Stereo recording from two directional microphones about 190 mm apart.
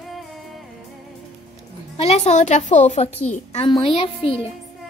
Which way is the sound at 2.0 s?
35° left (ahead or behind).